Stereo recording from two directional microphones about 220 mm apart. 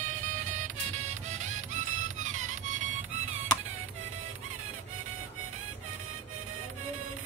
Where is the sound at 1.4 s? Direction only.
35° right (ahead or behind).